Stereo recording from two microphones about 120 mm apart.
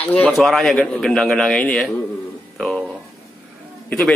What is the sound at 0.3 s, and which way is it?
A man's voice, centre (ahead or behind).